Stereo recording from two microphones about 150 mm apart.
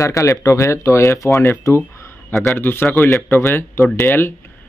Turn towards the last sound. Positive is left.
turn(degrees=15)  # may be behind; listen again after turning